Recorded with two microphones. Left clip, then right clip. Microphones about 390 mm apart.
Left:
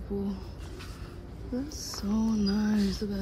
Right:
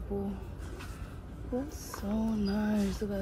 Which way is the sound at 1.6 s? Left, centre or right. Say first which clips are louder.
Left 3 dB; centre.